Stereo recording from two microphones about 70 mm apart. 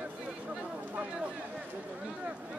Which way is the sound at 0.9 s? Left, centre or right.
Right.